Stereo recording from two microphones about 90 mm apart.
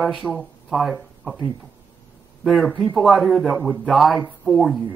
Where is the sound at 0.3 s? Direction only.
Centre (ahead or behind).